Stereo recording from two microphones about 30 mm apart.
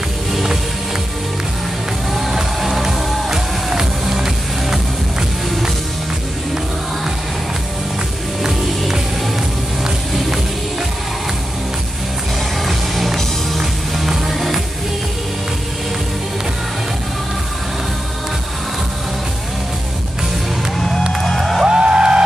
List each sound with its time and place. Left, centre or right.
0.3 s music: centre
2.1 s music: centre
8.4 s music: centre
12.6 s music: centre
21.2 s music: centre
21.6 s music: right